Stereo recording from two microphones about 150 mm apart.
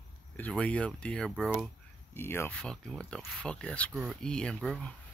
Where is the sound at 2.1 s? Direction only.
15° left (ahead or behind).